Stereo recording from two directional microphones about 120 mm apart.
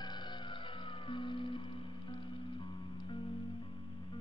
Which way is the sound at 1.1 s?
45° left (ahead or behind).